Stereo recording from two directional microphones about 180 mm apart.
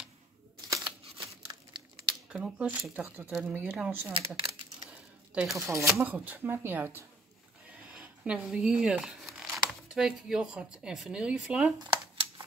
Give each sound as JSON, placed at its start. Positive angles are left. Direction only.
{"t": 0.7, "sound": "crumpling", "side_deg": -25}
{"t": 2.3, "sound": "speech", "side_deg": -5}
{"t": 5.6, "sound": "speech", "side_deg": -15}
{"t": 11.8, "sound": "a sound", "side_deg": -25}